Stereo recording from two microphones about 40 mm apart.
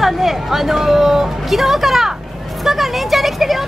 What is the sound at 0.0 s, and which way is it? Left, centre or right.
A woman's voice, centre.